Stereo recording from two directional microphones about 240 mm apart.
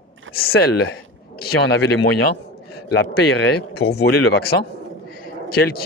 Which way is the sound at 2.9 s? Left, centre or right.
Left.